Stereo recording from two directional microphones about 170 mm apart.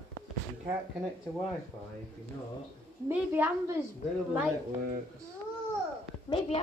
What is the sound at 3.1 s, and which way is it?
Speech, 10° right (ahead or behind).